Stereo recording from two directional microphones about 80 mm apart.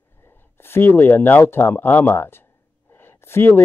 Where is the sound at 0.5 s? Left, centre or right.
Left.